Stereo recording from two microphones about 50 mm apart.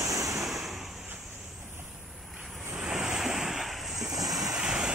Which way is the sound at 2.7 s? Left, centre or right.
Centre.